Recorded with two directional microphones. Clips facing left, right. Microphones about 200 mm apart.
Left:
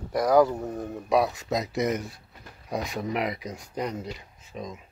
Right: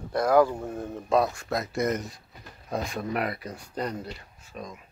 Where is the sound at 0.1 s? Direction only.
15° left (ahead or behind).